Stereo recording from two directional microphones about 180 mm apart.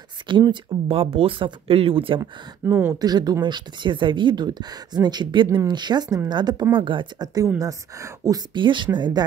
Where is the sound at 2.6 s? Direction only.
15° right (ahead or behind).